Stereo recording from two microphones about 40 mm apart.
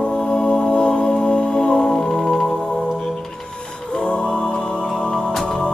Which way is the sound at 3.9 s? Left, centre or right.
Left.